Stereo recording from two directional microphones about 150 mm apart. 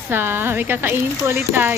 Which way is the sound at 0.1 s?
15° right (ahead or behind).